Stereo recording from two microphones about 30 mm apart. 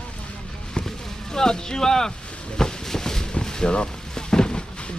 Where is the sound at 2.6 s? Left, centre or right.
Centre.